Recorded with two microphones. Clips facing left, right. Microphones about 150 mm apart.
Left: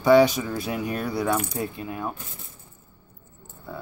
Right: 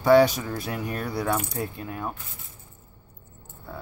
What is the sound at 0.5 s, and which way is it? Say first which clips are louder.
Speech: left 3 dB; 20° left (ahead or behind).